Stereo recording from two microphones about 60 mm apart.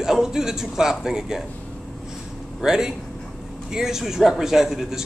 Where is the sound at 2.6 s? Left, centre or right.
Centre.